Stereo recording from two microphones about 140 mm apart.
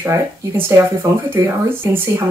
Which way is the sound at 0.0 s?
20° right (ahead or behind).